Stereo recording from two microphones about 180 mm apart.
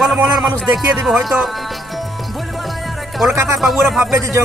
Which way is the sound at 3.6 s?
Centre (ahead or behind).